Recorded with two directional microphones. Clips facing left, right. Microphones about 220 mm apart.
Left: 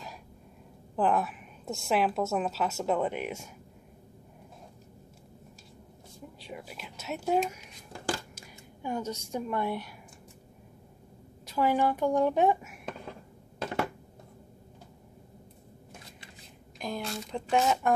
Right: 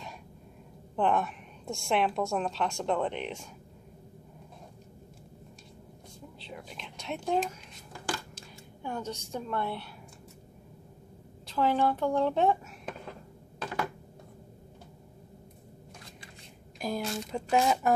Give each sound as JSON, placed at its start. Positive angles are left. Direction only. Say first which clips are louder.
{"t": 0.9, "sound": "a woman's voice", "louder": "left 1 dB", "side_deg": 5}
{"t": 6.4, "sound": "whispering", "louder": "left 2 dB", "side_deg": 5}
{"t": 8.4, "sound": "speech", "louder": "even", "side_deg": 10}
{"t": 11.4, "sound": "a woman's voice", "louder": "even", "side_deg": 10}
{"t": 13.6, "sound": "a sound", "louder": "left 3 dB", "side_deg": 25}
{"t": 16.8, "sound": "a woman's voice", "louder": "right 2 dB", "side_deg": -5}